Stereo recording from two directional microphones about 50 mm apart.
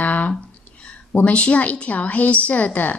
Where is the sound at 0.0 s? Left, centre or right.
Left.